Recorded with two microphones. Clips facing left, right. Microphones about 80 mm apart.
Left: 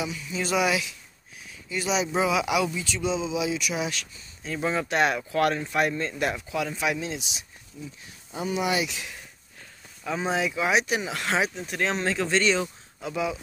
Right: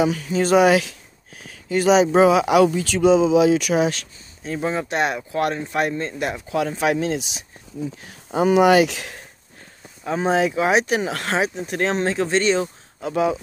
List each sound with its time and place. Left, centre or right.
0.0 s speech: right
0.4 s speech: right
4.6 s speech: right
6.1 s speech: right
6.5 s speech: right
8.0 s speech: right
10.0 s speech: right
11.3 s speech: right